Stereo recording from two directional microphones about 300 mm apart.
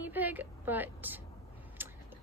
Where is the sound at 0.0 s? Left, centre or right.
Centre.